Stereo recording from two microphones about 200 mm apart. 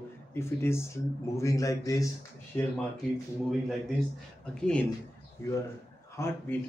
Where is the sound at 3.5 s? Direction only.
Centre (ahead or behind).